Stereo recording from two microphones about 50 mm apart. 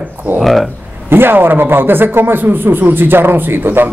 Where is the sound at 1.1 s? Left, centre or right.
Right.